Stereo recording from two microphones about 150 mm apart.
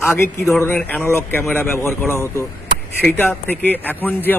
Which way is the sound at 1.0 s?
15° left (ahead or behind).